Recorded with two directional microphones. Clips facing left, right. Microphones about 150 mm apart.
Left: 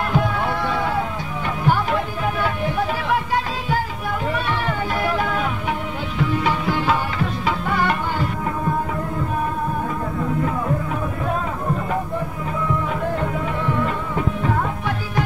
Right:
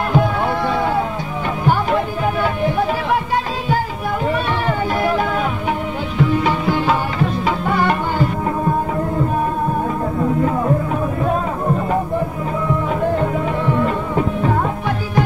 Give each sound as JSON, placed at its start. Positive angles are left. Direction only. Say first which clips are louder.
{"t": 0.1, "sound": "music", "louder": "right 6 dB", "side_deg": -30}
{"t": 4.3, "sound": "music", "louder": "right 4 dB", "side_deg": -30}
{"t": 13.2, "sound": "music", "louder": "right 5 dB", "side_deg": -30}